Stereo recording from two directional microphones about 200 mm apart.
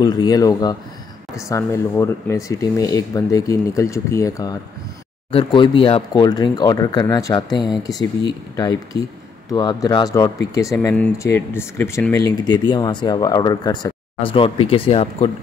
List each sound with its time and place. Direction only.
0.0 s speech: 20° left (ahead or behind)